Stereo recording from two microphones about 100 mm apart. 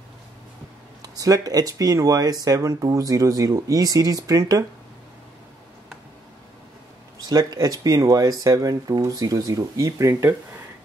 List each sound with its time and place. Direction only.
1.0 s speech: 35° right (ahead or behind)
7.2 s speech: 40° right (ahead or behind)